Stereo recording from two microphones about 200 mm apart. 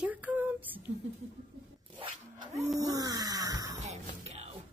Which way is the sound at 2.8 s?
20° right (ahead or behind).